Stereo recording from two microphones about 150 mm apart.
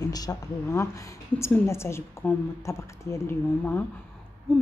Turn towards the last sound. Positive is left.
turn(degrees=5)  # may be behind; listen again after turning